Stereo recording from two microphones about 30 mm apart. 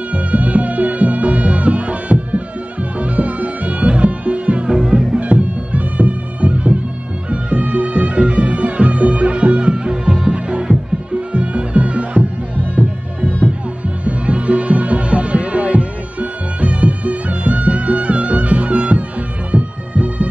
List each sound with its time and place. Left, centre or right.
0.1 s music: right
4.6 s music: right
5.2 s music: right
13.8 s music: right
19.5 s bagpipes: right